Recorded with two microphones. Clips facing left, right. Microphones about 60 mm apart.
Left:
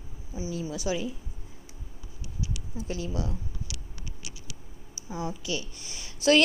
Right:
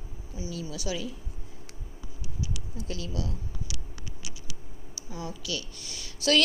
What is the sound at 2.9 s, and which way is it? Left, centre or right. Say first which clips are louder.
Speech: left 2 dB; left.